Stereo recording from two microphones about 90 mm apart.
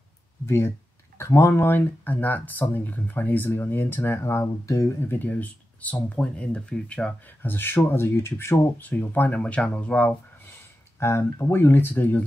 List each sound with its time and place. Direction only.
0.5 s speech: 30° left (ahead or behind); by 10.1 s 15° left (ahead or behind)
11.0 s speech: 30° left (ahead or behind)